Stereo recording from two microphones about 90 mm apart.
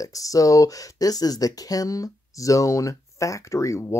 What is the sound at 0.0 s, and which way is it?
Speech, 40° left (ahead or behind).